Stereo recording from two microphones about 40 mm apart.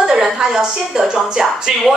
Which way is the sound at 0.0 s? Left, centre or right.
Centre.